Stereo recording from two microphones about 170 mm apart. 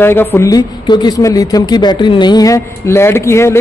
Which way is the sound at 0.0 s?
15° left (ahead or behind).